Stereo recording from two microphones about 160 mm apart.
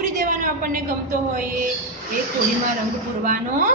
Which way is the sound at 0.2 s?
55° right (ahead or behind).